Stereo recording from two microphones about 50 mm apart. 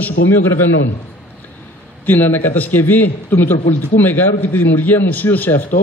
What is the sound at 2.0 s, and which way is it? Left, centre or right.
A man's voice, left.